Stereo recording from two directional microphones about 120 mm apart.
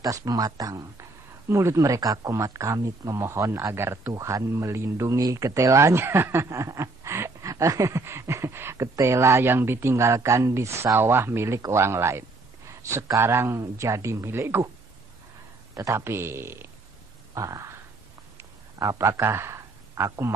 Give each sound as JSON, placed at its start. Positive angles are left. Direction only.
{"t": 0.0, "sound": "speech", "side_deg": -30}
{"t": 15.7, "sound": "speech", "side_deg": -25}
{"t": 17.3, "sound": "a sound", "side_deg": -30}